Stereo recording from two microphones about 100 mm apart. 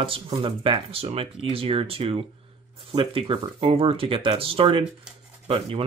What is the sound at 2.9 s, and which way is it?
Speech, 60° right (ahead or behind).